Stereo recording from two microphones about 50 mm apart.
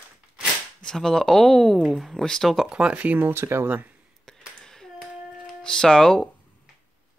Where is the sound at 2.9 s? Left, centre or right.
Right.